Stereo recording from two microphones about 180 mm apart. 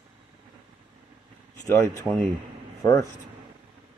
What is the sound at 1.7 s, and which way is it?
Speech, 10° left (ahead or behind).